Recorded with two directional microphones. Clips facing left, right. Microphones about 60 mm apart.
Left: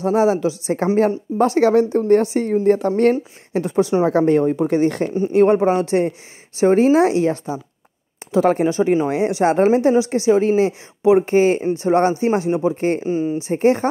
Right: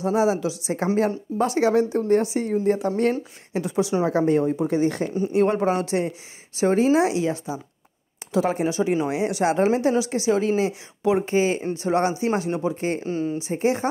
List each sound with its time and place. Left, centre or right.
0.0 s speech: left
4.1 s speech: left
5.1 s speech: left
11.2 s speech: left
12.4 s speech: left
13.0 s speech: centre
13.4 s speech: left